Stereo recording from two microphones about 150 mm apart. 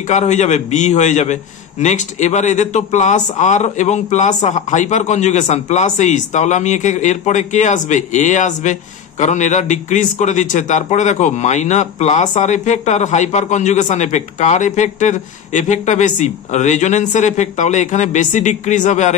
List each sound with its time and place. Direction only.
0.1 s a man's voice: 50° left (ahead or behind)